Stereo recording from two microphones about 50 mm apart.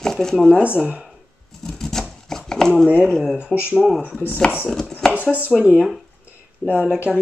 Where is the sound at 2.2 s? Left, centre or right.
Centre.